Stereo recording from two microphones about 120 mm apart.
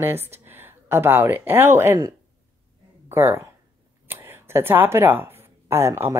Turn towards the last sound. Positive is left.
turn(degrees=-25)  # may be behind; listen again after turning